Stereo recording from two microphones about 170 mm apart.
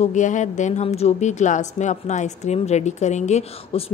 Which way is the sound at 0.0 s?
45° left (ahead or behind).